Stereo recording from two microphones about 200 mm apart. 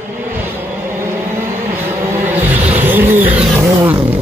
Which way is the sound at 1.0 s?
10° right (ahead or behind).